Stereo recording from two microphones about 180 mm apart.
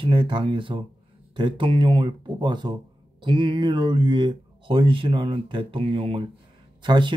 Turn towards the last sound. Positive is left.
turn(degrees=-25)  # may be behind; listen again after turning